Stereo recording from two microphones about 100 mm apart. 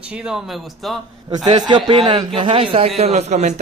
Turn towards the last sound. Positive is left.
turn(degrees=-90)